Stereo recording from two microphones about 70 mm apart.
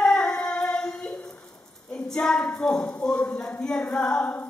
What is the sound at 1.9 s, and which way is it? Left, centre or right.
A woman's voice, centre.